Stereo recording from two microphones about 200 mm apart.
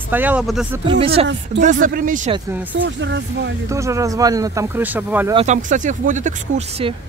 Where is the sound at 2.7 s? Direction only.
65° right (ahead or behind).